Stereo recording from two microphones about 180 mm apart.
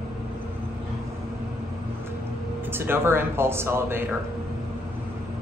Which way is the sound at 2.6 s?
10° right (ahead or behind).